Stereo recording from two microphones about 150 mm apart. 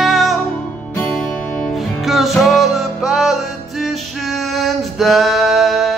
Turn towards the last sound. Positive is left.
turn(degrees=0)  # may be behind; listen again after turning